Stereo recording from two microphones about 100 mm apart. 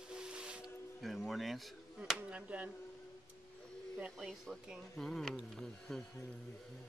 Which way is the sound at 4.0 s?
Centre (ahead or behind).